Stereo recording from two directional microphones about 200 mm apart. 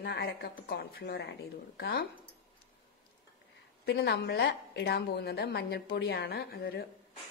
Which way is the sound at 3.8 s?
55° left (ahead or behind).